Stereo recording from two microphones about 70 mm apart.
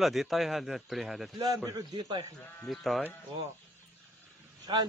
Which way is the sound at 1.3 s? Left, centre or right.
Right.